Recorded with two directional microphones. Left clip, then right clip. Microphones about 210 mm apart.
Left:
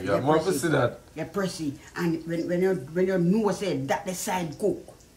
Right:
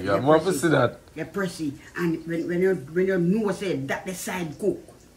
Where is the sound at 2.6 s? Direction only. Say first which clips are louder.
Right 3 dB; 25° left (ahead or behind).